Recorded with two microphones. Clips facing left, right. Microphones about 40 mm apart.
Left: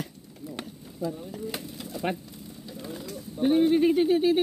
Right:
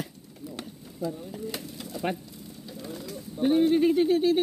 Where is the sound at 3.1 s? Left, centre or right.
Centre.